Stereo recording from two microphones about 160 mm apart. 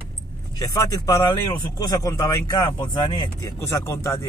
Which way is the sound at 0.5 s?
20° left (ahead or behind).